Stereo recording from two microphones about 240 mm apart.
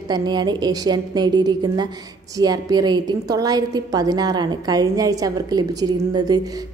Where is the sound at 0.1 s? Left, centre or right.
Centre.